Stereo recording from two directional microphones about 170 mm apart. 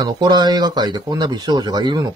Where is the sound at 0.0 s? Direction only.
25° right (ahead or behind).